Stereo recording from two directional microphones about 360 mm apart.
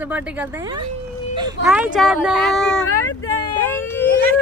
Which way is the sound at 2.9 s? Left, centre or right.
Left.